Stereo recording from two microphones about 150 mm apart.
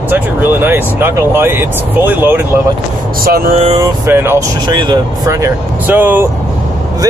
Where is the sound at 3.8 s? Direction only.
15° right (ahead or behind).